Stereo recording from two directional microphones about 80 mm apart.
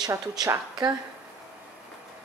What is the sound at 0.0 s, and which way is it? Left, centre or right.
Speech, right.